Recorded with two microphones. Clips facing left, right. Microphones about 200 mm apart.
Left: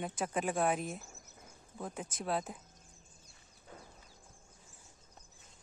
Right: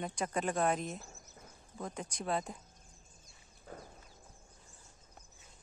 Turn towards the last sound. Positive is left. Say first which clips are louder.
# right 4 dB
turn(degrees=-40)  # may be behind; listen again after turning